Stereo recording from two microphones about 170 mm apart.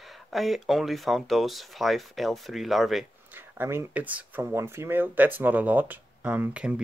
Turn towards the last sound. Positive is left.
turn(degrees=-5)  # may be behind; listen again after turning